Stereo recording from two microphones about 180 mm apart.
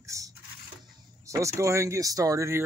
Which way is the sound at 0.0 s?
15° right (ahead or behind).